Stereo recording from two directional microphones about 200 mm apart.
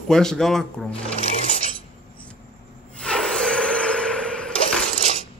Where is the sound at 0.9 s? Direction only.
30° left (ahead or behind).